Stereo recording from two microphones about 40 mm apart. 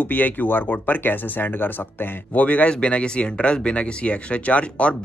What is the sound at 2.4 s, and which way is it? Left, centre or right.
Speech, left.